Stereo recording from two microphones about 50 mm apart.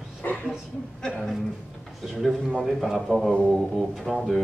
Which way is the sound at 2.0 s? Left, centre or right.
Centre.